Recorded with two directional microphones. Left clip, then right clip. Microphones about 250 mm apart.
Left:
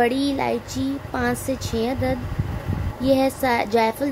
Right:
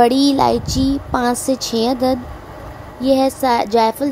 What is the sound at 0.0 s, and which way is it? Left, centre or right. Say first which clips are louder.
Speech: right 8 dB; right.